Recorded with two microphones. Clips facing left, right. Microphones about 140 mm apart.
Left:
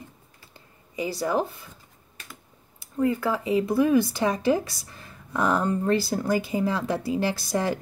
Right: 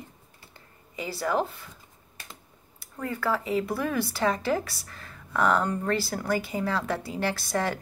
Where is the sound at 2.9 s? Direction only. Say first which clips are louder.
Left 5 dB; 20° left (ahead or behind).